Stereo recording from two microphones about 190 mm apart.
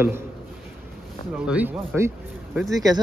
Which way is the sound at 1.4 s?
5° right (ahead or behind).